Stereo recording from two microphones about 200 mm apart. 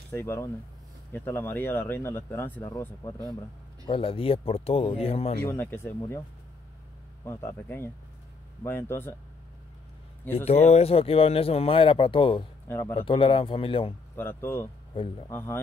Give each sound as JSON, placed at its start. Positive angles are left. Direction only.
{"t": 0.1, "sound": "speech", "side_deg": 10}
{"t": 5.4, "sound": "speech", "side_deg": 10}
{"t": 7.2, "sound": "speech", "side_deg": 15}
{"t": 10.3, "sound": "speech", "side_deg": 30}
{"t": 12.6, "sound": "speech", "side_deg": 10}
{"t": 12.9, "sound": "speech", "side_deg": 25}
{"t": 14.1, "sound": "speech", "side_deg": 10}